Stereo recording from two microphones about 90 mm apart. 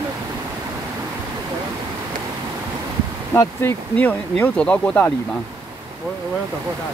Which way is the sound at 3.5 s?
20° left (ahead or behind).